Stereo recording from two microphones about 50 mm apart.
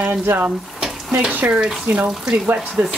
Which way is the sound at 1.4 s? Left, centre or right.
Centre.